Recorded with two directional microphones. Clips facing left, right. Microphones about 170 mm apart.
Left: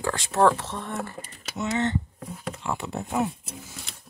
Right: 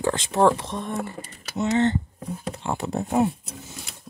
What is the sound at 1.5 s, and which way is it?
Speech, 30° right (ahead or behind).